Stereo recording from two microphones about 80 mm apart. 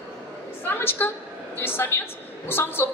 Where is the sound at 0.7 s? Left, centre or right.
Left.